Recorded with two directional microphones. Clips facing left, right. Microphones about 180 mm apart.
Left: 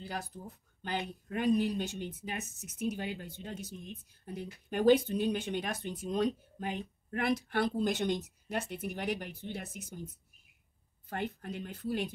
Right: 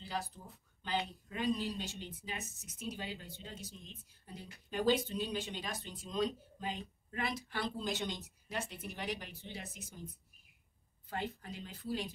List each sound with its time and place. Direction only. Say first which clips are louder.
0.0 s speech: left 1 dB; 55° left (ahead or behind)
11.1 s speech: left 4 dB; 60° left (ahead or behind)